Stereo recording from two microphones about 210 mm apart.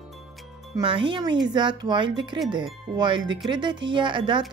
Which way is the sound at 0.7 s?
25° right (ahead or behind).